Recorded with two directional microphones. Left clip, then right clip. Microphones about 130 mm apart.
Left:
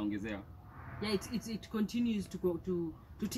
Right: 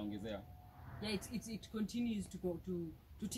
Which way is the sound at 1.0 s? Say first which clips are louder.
Left 7 dB; 20° right (ahead or behind).